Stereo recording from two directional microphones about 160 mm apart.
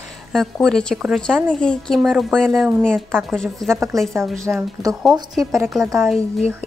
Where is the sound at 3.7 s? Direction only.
20° right (ahead or behind).